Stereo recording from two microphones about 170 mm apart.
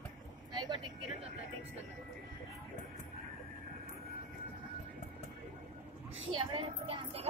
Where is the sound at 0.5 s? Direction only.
25° right (ahead or behind).